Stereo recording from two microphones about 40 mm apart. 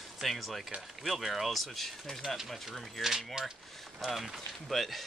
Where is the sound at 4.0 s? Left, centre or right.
Centre.